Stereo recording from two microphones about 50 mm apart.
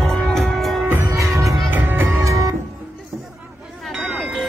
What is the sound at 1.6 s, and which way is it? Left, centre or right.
Music, right.